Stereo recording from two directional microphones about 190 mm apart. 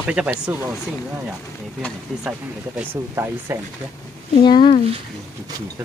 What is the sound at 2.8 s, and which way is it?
Speech, 10° right (ahead or behind).